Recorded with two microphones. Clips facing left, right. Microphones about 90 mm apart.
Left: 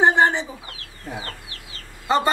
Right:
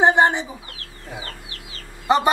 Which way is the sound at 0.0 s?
15° right (ahead or behind).